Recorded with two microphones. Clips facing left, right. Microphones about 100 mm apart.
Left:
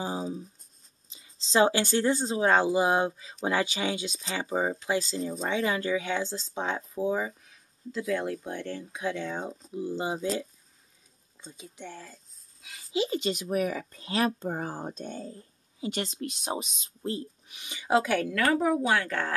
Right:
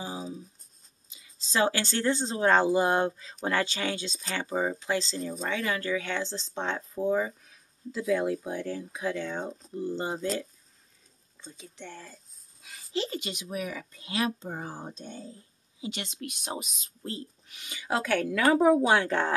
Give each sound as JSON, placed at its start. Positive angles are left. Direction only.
{"t": 0.0, "sound": "writing", "side_deg": 30}
{"t": 1.1, "sound": "speech", "side_deg": 25}
{"t": 11.5, "sound": "speech", "side_deg": 10}
{"t": 13.2, "sound": "speech", "side_deg": 40}
{"t": 18.3, "sound": "a woman's voice", "side_deg": -15}